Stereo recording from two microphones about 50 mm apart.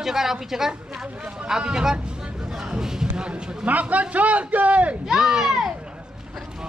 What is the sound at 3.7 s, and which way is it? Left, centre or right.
A man's voice, right.